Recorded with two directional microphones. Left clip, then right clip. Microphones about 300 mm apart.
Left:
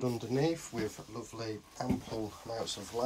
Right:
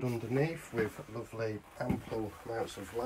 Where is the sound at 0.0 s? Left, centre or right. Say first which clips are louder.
Left 1 dB; centre.